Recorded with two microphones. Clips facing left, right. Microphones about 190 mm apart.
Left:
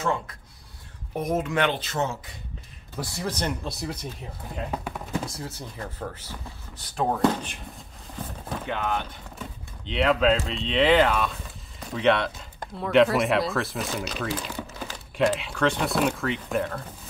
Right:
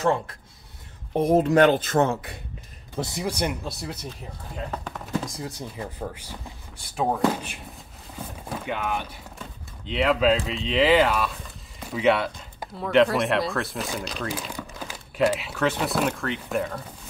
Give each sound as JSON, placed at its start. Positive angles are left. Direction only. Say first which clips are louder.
{"t": 0.0, "sound": "speech", "louder": "right 4 dB", "side_deg": -35}
{"t": 3.0, "sound": "speech", "louder": "right 3 dB", "side_deg": -15}
{"t": 4.6, "sound": "speech", "louder": "left 1 dB", "side_deg": 10}
{"t": 5.4, "sound": "speech", "louder": "right 2 dB", "side_deg": -15}